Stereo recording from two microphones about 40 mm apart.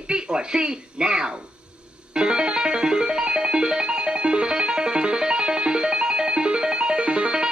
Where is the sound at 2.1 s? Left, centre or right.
Right.